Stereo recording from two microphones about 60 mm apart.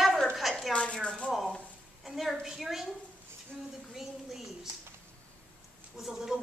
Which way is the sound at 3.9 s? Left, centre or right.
Centre.